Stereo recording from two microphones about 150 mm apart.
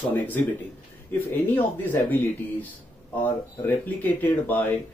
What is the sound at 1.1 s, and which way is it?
A man's voice, 15° left (ahead or behind).